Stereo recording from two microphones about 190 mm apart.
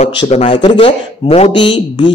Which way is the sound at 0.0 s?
35° left (ahead or behind).